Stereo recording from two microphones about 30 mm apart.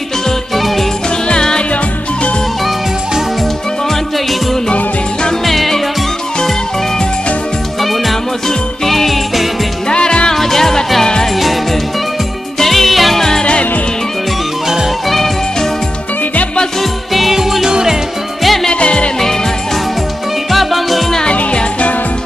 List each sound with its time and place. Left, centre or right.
1.3 s music: left
5.4 s music: centre
7.8 s music: centre
9.8 s music: left
10.3 s music: centre
11.3 s music: centre
13.4 s music: left
15.0 s music: centre
17.1 s music: centre
18.4 s music: centre
18.7 s music: left
20.5 s music: centre